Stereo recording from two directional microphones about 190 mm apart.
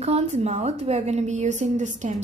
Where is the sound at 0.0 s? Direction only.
35° right (ahead or behind).